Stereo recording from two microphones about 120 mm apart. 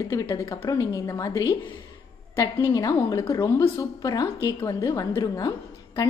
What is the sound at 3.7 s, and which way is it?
A woman's voice, 30° left (ahead or behind).